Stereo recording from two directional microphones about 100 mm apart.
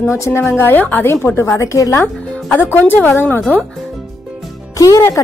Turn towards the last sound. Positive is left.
turn(degrees=35)  # may be behind; listen again after turning